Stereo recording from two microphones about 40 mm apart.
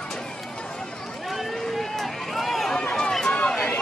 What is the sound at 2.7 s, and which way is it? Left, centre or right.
Run, centre.